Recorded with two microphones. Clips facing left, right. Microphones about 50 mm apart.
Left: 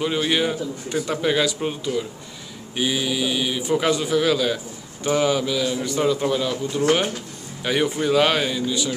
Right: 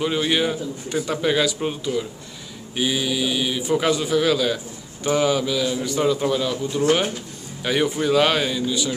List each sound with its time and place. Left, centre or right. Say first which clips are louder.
0.0 s a man's voice: even; centre
7.6 s a man's voice: even; centre